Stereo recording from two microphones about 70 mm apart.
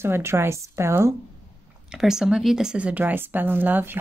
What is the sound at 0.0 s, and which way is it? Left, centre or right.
Speech, right.